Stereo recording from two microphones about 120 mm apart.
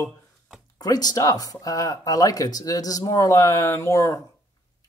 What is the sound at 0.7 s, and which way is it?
Speech, 30° left (ahead or behind).